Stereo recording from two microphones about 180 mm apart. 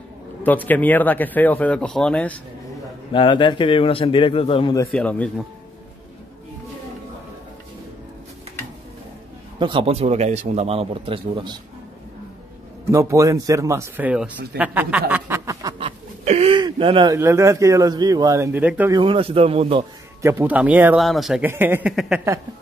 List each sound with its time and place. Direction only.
0.4 s speech: 10° left (ahead or behind)
3.1 s a man's voice: 25° left (ahead or behind)
4.9 s speech: 5° left (ahead or behind)
9.6 s speech: 30° right (ahead or behind)
12.9 s speech: 15° right (ahead or behind)
15.8 s a sound: 35° right (ahead or behind)
17.2 s speech: 15° right (ahead or behind)
18.9 s speech: 25° right (ahead or behind)
20.2 s speech: 15° right (ahead or behind)
21.5 s speech: 10° right (ahead or behind)